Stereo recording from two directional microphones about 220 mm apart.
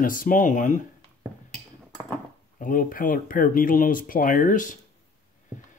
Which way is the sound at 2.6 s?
40° left (ahead or behind).